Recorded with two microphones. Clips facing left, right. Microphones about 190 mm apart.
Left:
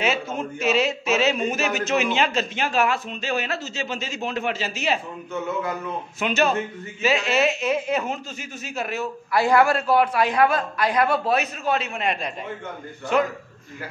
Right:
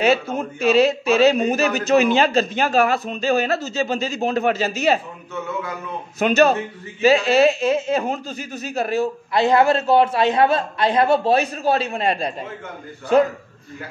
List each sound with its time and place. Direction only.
0.0 s speech: 35° right (ahead or behind)
6.1 s speech: 40° right (ahead or behind)